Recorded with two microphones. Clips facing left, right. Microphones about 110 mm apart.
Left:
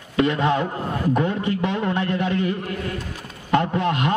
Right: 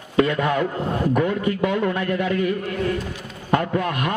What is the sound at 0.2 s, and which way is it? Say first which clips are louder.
A man's voice: even; 25° left (ahead or behind).